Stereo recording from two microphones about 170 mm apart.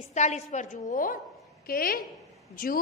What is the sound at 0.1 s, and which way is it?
A woman's voice, 45° left (ahead or behind).